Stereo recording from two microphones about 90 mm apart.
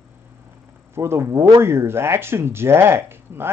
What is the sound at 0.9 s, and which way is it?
Speech, 30° right (ahead or behind).